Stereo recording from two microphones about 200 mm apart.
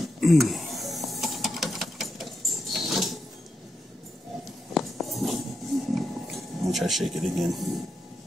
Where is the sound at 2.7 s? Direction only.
Centre (ahead or behind).